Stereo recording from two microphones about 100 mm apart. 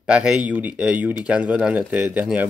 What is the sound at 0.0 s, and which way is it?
Speech, 10° right (ahead or behind).